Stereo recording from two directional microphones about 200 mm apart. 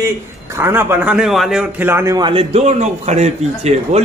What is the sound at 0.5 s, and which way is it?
A man's voice, 10° right (ahead or behind).